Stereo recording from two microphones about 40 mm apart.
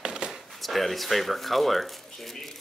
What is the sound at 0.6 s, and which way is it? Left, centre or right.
Speech, centre.